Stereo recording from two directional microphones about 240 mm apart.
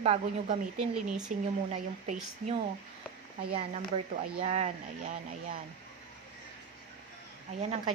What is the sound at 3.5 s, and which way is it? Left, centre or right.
A woman's voice, right.